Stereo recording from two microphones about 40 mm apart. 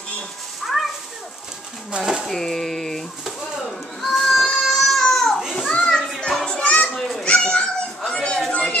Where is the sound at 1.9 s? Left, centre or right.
Right.